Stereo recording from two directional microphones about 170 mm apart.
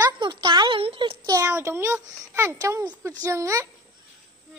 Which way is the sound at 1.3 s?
15° right (ahead or behind).